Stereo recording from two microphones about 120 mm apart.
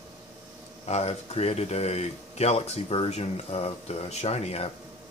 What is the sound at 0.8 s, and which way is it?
Speech, 65° left (ahead or behind).